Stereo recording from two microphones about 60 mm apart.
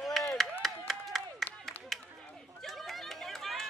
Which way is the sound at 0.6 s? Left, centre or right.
Centre.